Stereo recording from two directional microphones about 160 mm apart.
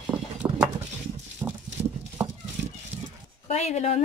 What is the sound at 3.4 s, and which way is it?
Speech, 45° left (ahead or behind).